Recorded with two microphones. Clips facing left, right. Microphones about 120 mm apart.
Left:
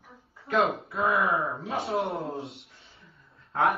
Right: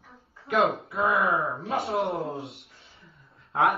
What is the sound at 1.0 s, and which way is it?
Speech, 10° right (ahead or behind).